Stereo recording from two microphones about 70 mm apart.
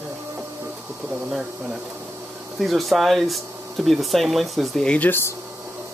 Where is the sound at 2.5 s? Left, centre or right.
Centre.